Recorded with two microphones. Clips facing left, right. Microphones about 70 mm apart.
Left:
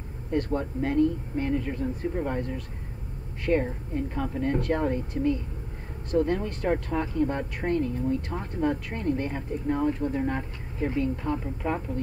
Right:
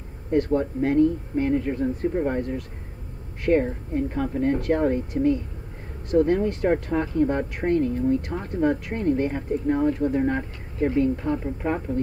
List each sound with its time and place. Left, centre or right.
0.6 s speech: right
3.9 s speech: right